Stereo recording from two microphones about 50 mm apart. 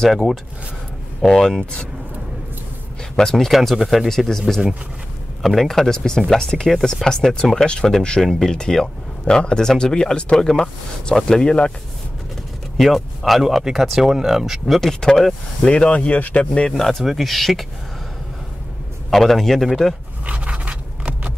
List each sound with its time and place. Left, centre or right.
0.1 s speech: centre
3.2 s speech: centre
6.7 s speech: centre
12.7 s speech: centre
14.8 s speech: centre; by 16.4 s left
16.7 s speech: centre
19.0 s speech: centre
20.2 s scrape: right